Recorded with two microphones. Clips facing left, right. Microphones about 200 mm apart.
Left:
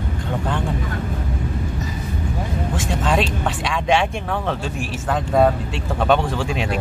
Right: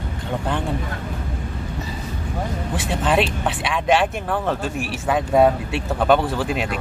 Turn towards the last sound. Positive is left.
turn(degrees=-5)  # may be behind; listen again after turning